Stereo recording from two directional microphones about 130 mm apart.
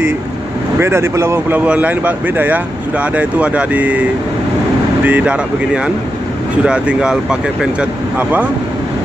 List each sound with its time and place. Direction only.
0.7 s speech: 20° right (ahead or behind)
5.0 s speech: 10° right (ahead or behind)